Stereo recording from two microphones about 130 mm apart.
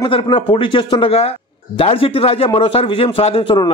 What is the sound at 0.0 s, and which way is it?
A man's voice, 45° left (ahead or behind).